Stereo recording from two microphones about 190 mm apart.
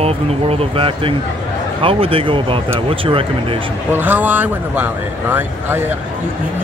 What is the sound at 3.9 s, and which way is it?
Speech, 10° right (ahead or behind).